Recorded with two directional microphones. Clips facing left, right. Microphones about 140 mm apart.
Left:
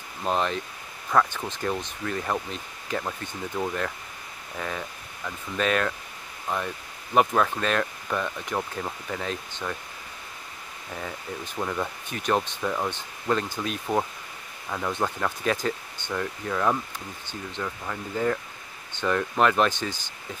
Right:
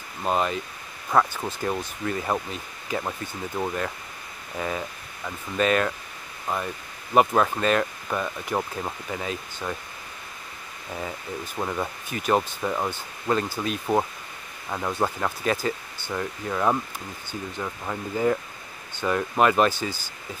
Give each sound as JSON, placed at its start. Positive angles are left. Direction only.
{"t": 0.2, "sound": "speech", "side_deg": -5}
{"t": 11.1, "sound": "speech", "side_deg": -10}